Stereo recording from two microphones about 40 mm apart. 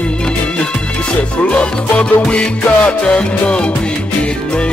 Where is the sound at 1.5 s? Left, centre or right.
Left.